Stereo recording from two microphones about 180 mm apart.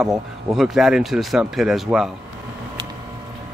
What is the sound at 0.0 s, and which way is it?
Speech, centre (ahead or behind).